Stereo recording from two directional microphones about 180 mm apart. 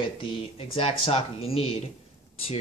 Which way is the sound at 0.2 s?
30° left (ahead or behind).